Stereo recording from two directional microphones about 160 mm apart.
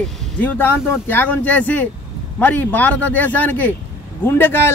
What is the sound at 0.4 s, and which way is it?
A man's voice, 10° left (ahead or behind).